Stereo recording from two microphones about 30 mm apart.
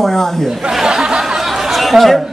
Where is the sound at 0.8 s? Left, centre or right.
Right.